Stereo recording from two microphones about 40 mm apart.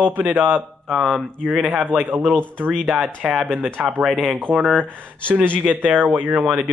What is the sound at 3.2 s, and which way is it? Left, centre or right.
Speech, centre.